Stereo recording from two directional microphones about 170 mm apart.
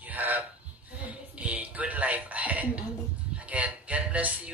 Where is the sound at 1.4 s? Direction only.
10° right (ahead or behind).